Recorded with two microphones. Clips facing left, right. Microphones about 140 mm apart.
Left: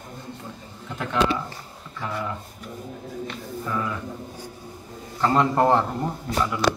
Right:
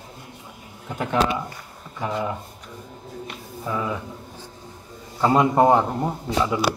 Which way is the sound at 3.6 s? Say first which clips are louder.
Right 2 dB; 15° right (ahead or behind).